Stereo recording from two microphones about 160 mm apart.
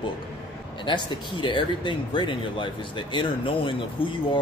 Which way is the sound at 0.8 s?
30° left (ahead or behind).